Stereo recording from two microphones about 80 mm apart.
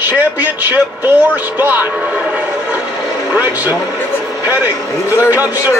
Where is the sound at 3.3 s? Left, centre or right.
Right.